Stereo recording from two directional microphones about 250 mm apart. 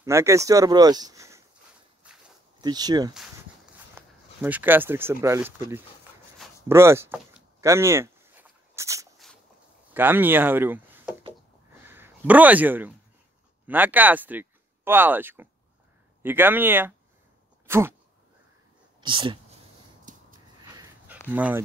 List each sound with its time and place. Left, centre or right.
0.0 s speech: centre
2.0 s walk: centre
2.6 s a man's voice: centre
6.7 s door: centre
9.2 s a sound: centre
9.9 s speech: centre
11.8 s a sound: centre
13.7 s a man's voice: centre
17.6 s a sound: centre
18.9 s speech: centre
20.1 s snort: right
20.7 s a sound: centre
21.3 s speech: centre